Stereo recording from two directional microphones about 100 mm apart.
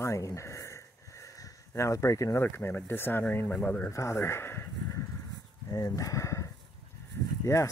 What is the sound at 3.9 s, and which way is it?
Speech, 30° left (ahead or behind).